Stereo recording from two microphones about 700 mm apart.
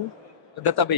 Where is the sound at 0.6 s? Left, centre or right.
Left.